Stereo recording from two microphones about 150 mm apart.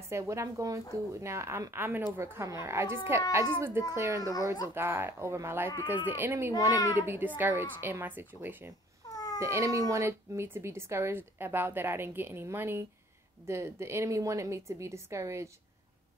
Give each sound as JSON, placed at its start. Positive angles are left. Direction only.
{"t": 0.1, "sound": "a woman's voice", "side_deg": -20}
{"t": 4.2, "sound": "a child's voice", "side_deg": 25}
{"t": 4.7, "sound": "speech", "side_deg": -15}
{"t": 9.1, "sound": "a sound", "side_deg": 25}
{"t": 9.4, "sound": "a woman's voice", "side_deg": -20}